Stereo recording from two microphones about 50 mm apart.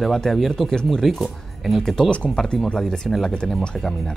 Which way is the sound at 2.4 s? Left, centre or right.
Centre.